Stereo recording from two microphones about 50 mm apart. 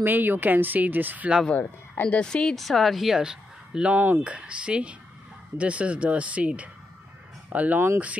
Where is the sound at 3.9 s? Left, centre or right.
Right.